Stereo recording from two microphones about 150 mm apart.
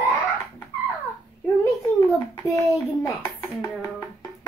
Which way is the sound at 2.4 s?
20° left (ahead or behind).